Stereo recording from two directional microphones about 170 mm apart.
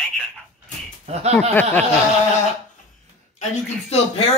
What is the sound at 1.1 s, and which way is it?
Speech, 40° right (ahead or behind).